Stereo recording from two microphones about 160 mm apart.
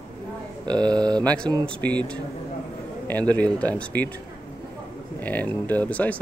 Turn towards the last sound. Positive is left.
turn(degrees=10)  # may be behind; listen again after turning